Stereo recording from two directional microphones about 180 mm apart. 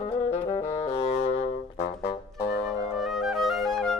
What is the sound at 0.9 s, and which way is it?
Music, 35° left (ahead or behind).